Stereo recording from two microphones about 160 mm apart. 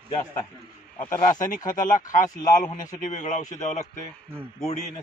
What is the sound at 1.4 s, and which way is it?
Speech, 55° left (ahead or behind).